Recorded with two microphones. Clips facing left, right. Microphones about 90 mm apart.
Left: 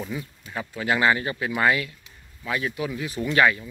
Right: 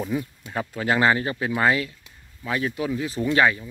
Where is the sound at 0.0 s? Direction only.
5° right (ahead or behind).